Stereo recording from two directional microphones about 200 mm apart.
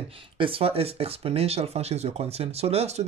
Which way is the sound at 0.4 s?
25° right (ahead or behind).